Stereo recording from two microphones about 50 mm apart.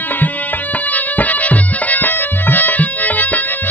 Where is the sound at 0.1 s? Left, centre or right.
Left.